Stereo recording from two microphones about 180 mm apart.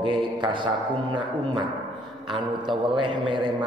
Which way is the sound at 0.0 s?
25° right (ahead or behind).